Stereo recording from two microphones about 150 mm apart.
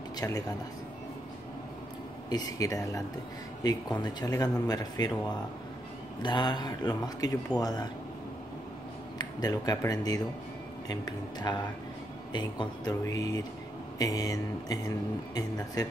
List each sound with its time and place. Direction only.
0.2 s speech: 25° left (ahead or behind)
2.2 s speech: 25° left (ahead or behind)
6.2 s speech: 30° left (ahead or behind)
9.2 s speech: 25° left (ahead or behind)